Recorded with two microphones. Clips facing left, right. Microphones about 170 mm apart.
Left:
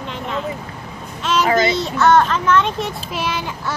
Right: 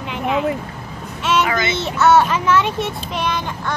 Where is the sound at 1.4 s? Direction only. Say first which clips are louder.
Left 5 dB; 35° left (ahead or behind).